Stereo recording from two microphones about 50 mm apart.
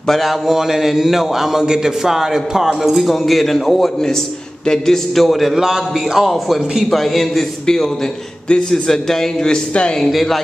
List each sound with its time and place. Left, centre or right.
0.5 s a man's voice: centre
8.5 s speech: centre
10.0 s a man's voice: centre